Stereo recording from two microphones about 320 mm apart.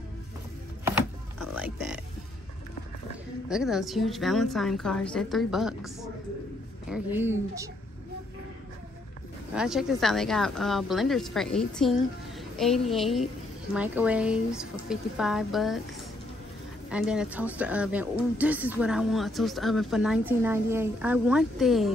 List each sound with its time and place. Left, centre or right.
0.9 s a sound: left
1.6 s speech: centre
3.4 s speech: centre
6.9 s speech: centre
9.5 s speech: centre
16.9 s speech: centre